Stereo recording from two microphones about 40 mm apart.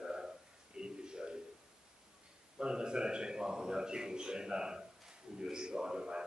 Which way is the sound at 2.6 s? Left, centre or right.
Right.